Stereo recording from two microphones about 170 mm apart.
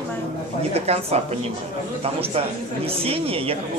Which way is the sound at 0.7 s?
35° right (ahead or behind).